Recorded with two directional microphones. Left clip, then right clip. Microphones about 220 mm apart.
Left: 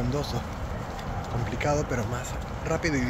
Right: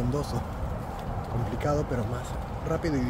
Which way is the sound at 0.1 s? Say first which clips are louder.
Left 1 dB; 15° right (ahead or behind).